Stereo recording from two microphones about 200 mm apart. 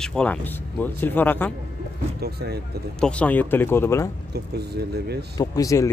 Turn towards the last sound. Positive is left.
turn(degrees=15)  # may be behind; listen again after turning